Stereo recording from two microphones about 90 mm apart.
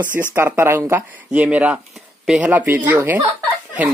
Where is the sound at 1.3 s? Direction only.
15° right (ahead or behind).